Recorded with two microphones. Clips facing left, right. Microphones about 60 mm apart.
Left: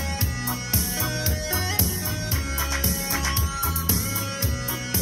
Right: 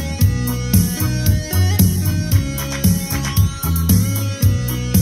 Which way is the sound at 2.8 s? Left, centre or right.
Left.